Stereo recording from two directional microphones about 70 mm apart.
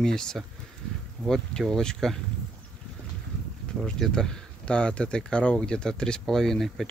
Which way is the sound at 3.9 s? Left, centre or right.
Centre.